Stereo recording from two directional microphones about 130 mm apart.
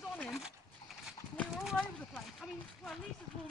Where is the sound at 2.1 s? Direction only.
5° left (ahead or behind).